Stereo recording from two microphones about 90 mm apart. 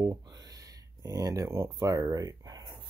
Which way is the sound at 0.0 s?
50° right (ahead or behind).